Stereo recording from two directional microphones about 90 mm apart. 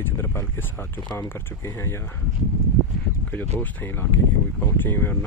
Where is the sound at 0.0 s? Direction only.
25° left (ahead or behind).